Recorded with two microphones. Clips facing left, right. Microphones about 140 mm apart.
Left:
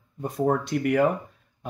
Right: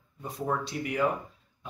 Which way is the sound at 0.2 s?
50° left (ahead or behind).